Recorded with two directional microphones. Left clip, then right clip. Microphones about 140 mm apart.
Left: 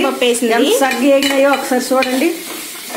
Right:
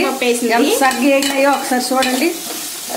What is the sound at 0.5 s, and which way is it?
Stir, 5° left (ahead or behind).